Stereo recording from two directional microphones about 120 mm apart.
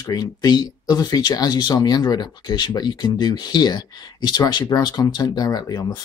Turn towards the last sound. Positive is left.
turn(degrees=30)  # may be behind; listen again after turning